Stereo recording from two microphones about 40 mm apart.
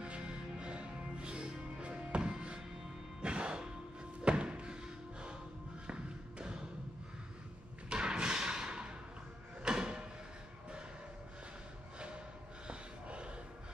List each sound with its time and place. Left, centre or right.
0.0 s music: right
5.9 s thump: right
7.9 s a sound: right
9.6 s drawer open or close: right
12.6 s snort: right